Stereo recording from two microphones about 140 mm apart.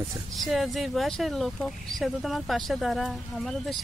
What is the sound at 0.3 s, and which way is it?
Speech, centre (ahead or behind).